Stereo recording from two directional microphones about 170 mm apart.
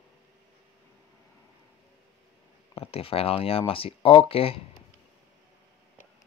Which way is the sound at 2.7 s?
35° left (ahead or behind).